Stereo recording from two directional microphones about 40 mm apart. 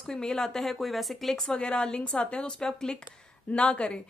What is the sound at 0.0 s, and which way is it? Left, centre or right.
Speech, centre.